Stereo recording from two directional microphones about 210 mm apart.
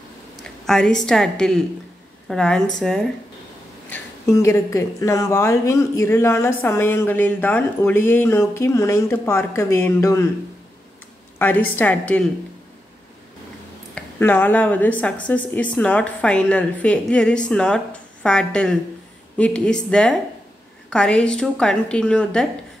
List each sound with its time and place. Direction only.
0.4 s a sound: centre (ahead or behind)
1.0 s speech: 5° left (ahead or behind)
3.9 s a woman's voice: 15° left (ahead or behind)
11.3 s a woman's voice: 10° left (ahead or behind)
13.9 s speech: 10° left (ahead or behind)